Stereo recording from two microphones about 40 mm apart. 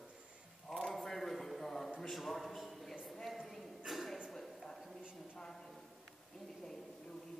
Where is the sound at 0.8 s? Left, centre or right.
Centre.